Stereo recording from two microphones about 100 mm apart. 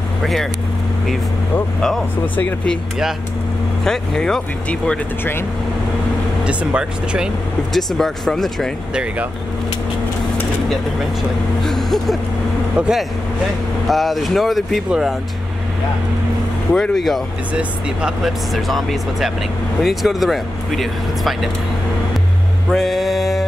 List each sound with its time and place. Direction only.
0.2 s speech: centre (ahead or behind)
2.3 s speech: 10° left (ahead or behind)
3.8 s speech: 5° left (ahead or behind)
6.4 s speech: 10° right (ahead or behind)
7.7 s speech: 5° left (ahead or behind)
11.6 s speech: 5° left (ahead or behind)
12.7 s speech: 10° right (ahead or behind)
16.7 s speech: 5° left (ahead or behind)
17.6 s speech: 10° right (ahead or behind)
22.7 s mantra: centre (ahead or behind)